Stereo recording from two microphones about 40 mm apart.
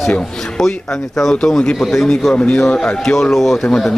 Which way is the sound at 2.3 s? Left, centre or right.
Left.